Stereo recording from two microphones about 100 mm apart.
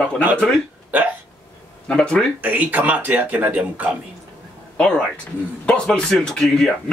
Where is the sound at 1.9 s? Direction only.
10° left (ahead or behind).